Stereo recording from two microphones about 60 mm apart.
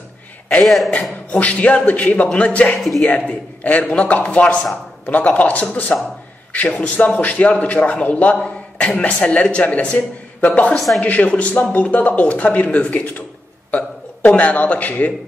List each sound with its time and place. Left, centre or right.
0.5 s speech: centre
1.3 s a man's voice: left